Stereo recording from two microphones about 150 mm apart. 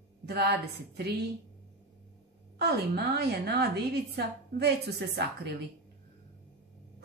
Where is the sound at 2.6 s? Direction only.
90° right.